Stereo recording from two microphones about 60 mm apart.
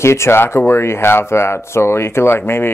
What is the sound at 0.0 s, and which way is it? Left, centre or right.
Speech, left.